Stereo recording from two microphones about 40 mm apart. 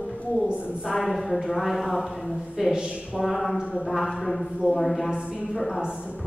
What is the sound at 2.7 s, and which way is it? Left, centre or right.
Speech, centre.